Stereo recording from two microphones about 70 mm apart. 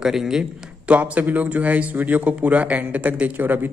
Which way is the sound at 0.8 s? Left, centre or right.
Centre.